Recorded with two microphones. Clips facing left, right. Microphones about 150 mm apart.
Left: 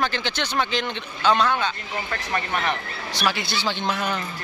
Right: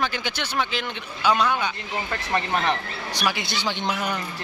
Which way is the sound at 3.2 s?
15° right (ahead or behind).